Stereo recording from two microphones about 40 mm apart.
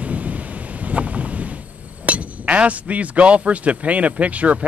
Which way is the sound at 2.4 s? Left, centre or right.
Right.